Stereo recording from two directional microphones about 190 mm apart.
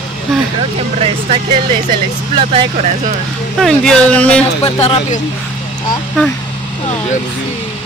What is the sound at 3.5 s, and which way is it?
Speech, 5° left (ahead or behind).